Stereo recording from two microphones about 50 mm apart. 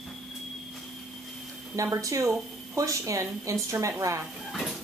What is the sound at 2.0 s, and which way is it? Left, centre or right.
Speech, right.